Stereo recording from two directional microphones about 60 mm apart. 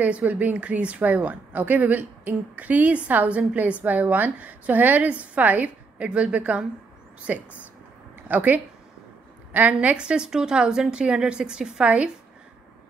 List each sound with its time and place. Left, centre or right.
0.0 s a woman's voice: right